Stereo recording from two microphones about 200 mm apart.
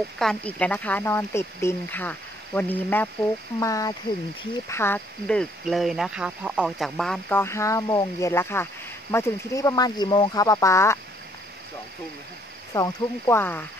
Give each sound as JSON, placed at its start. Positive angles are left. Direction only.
{"t": 0.2, "sound": "speech", "side_deg": 5}
{"t": 12.7, "sound": "speech", "side_deg": 15}